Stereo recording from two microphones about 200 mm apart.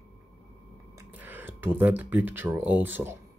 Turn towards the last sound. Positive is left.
turn(degrees=-10)  # may be behind; listen again after turning